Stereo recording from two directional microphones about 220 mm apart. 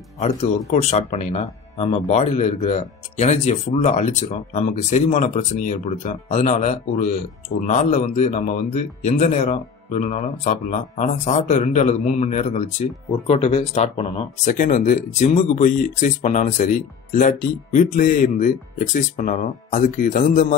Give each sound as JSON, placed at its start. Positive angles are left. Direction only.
{"t": 0.2, "sound": "speech", "side_deg": 30}